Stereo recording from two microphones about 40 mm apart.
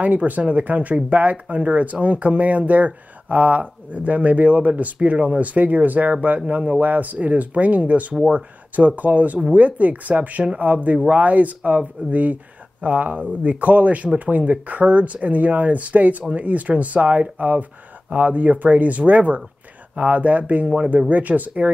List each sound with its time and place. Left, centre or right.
0.0 s speech: right
6.8 s speech: right